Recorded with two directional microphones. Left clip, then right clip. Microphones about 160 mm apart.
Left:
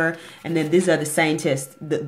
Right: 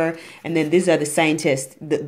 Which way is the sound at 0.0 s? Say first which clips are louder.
Even; 10° right (ahead or behind).